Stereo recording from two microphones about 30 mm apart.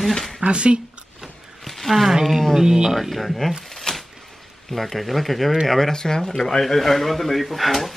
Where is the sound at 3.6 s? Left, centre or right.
Centre.